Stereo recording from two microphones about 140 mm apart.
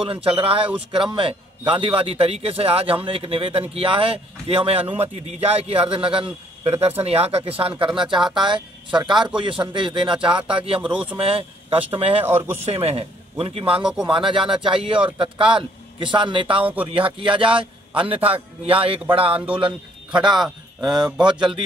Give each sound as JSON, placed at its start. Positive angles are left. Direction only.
{"t": 0.0, "sound": "a man's voice", "side_deg": -40}
{"t": 16.6, "sound": "speech", "side_deg": -10}
{"t": 16.9, "sound": "a man's voice", "side_deg": -40}